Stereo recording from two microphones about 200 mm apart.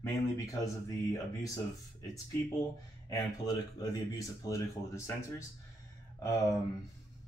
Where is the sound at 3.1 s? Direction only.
20° left (ahead or behind).